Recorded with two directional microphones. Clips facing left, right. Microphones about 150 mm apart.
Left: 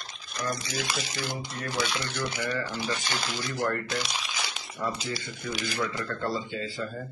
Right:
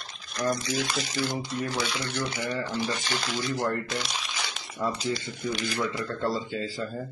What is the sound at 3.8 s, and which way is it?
Crumpling, centre (ahead or behind).